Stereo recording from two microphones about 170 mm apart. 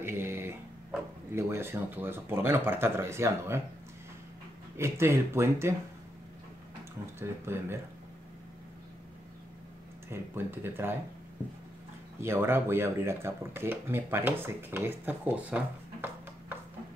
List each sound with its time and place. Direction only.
0.0 s a sound: 15° right (ahead or behind)
1.3 s speech: 15° right (ahead or behind)
4.7 s speech: 15° right (ahead or behind)
7.2 s speech: 15° right (ahead or behind)
10.0 s speech: 15° right (ahead or behind)
12.2 s speech: 15° right (ahead or behind)